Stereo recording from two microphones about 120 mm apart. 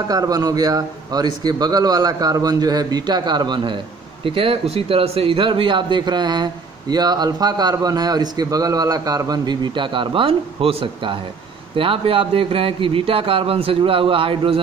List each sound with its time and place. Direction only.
0.1 s a man's voice: 30° right (ahead or behind); by 14.6 s 50° right (ahead or behind)